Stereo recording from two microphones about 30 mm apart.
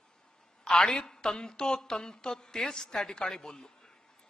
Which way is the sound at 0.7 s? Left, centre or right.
Left.